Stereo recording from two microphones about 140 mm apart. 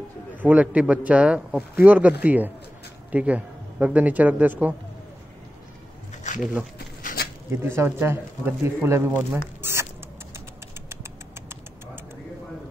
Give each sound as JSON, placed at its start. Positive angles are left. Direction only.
{"t": 0.4, "sound": "speech", "side_deg": -10}
{"t": 7.5, "sound": "speech", "side_deg": -20}